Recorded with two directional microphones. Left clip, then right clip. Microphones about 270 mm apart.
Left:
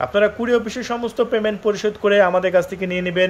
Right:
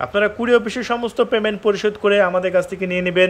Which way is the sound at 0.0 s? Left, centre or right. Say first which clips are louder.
Left 1 dB; centre.